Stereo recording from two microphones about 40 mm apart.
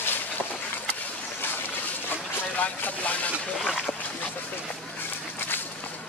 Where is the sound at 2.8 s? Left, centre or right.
Left.